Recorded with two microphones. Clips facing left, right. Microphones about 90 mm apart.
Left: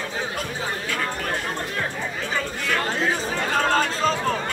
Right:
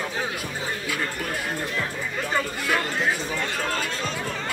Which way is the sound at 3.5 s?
45° left (ahead or behind).